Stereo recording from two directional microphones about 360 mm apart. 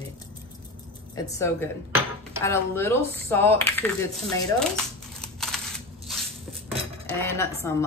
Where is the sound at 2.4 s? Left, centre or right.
Centre.